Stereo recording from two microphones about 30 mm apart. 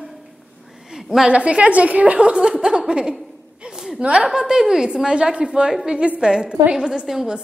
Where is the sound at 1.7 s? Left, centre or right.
Right.